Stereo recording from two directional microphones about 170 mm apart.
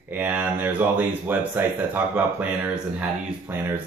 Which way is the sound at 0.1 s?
10° right (ahead or behind).